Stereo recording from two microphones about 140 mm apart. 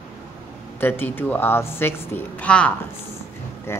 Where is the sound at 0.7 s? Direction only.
15° left (ahead or behind).